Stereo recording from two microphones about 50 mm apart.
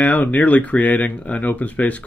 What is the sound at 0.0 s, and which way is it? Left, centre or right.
Speech, left.